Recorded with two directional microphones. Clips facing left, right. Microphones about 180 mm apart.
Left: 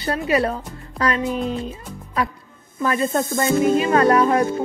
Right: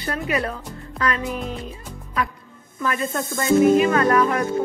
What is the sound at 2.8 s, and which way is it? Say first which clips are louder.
Speech: left 4 dB; 30° left (ahead or behind).